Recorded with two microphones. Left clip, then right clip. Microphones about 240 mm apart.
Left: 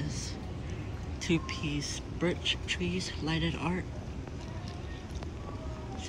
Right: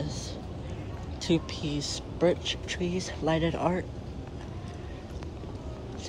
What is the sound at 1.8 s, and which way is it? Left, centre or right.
Speech, centre.